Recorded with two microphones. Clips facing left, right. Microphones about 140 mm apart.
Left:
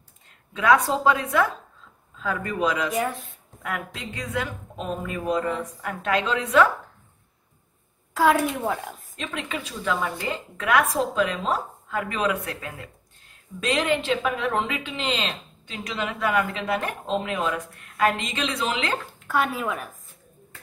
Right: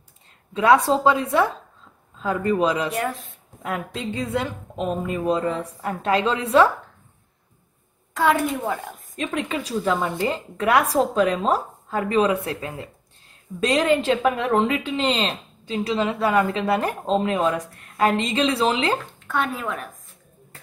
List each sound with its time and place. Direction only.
0.5 s a woman's voice: 30° right (ahead or behind)
2.9 s a woman's voice: centre (ahead or behind)
3.6 s a woman's voice: 30° right (ahead or behind)
8.1 s a woman's voice: centre (ahead or behind)
9.3 s a woman's voice: 35° right (ahead or behind)
19.1 s speech: 5° left (ahead or behind)